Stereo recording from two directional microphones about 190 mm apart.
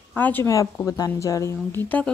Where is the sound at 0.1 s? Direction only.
10° left (ahead or behind).